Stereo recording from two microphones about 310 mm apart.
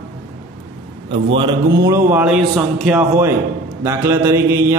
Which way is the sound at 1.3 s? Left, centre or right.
Centre.